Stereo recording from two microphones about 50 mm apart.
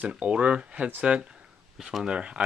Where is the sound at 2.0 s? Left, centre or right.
Right.